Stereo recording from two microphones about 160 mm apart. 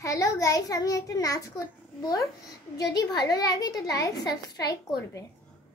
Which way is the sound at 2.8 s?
25° left (ahead or behind).